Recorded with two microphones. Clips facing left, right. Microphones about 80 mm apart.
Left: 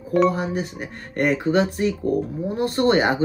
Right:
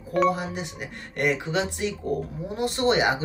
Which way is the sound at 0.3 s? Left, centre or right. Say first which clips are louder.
Left 3 dB; left.